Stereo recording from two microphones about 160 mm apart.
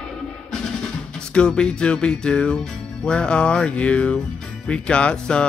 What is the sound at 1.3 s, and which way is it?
Music, 5° left (ahead or behind).